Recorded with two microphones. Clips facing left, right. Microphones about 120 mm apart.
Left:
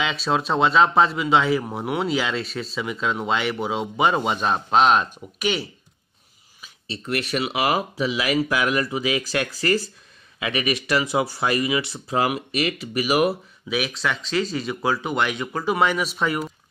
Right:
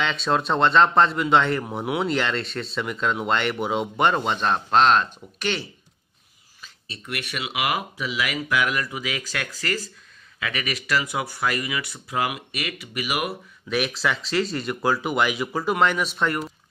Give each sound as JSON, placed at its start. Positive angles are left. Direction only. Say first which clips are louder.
{"t": 0.0, "sound": "speech", "louder": "even", "side_deg": 5}
{"t": 6.9, "sound": "speech", "louder": "left 7 dB", "side_deg": 35}
{"t": 13.7, "sound": "speech", "louder": "right 1 dB", "side_deg": 0}